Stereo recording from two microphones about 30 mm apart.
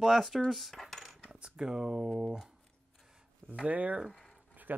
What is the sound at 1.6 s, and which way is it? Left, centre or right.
Speech, centre.